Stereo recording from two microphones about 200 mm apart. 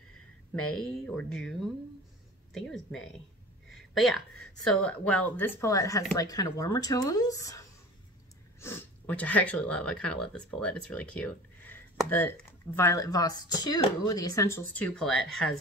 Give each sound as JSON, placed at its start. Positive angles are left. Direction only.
{"t": 0.7, "sound": "speech", "side_deg": 5}
{"t": 3.7, "sound": "a sound", "side_deg": 0}
{"t": 4.6, "sound": "speech", "side_deg": 5}